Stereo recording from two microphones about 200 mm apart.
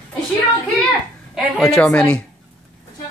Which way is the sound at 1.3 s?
Centre (ahead or behind).